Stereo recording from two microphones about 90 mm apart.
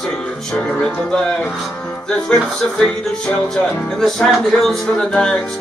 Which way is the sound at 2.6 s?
5° left (ahead or behind).